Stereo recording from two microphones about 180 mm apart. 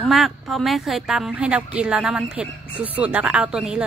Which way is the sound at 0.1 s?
Centre (ahead or behind).